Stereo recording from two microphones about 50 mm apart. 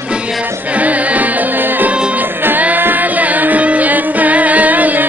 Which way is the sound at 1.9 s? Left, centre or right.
Right.